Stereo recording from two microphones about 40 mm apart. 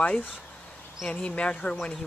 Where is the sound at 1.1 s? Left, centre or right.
Left.